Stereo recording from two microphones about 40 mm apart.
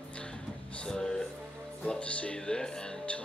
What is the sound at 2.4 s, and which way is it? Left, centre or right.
Speech, centre.